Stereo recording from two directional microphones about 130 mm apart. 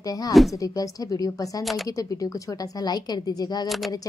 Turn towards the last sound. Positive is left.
turn(degrees=0)  # may be behind; listen again after turning